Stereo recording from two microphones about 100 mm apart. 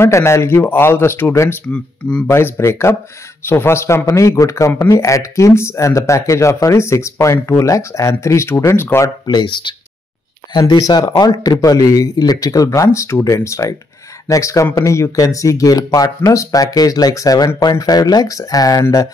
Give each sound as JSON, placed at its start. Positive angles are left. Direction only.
{"t": 0.0, "sound": "speech", "side_deg": 25}
{"t": 1.7, "sound": "speech", "side_deg": 10}
{"t": 2.2, "sound": "speech", "side_deg": 25}
{"t": 9.2, "sound": "speech", "side_deg": 50}
{"t": 10.5, "sound": "speech", "side_deg": 40}